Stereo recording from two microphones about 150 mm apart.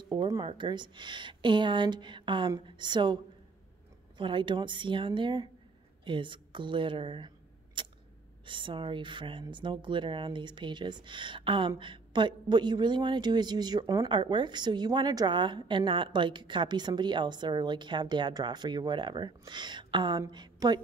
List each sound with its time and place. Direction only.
0.1 s speech: 30° right (ahead or behind)
4.2 s speech: 35° right (ahead or behind)